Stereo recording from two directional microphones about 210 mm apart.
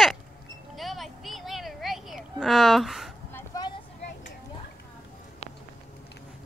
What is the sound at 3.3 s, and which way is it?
Vehicle, 15° left (ahead or behind).